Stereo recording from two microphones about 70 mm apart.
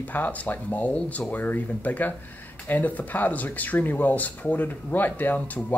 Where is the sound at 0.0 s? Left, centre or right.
Left.